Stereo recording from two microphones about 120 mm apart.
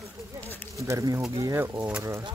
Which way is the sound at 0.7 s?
25° right (ahead or behind).